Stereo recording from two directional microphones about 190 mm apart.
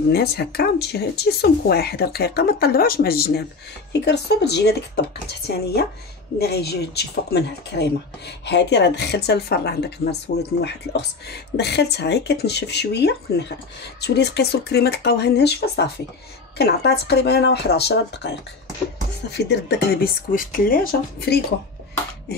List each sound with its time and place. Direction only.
0.1 s speech: 55° left (ahead or behind)
19.3 s speech: 60° left (ahead or behind)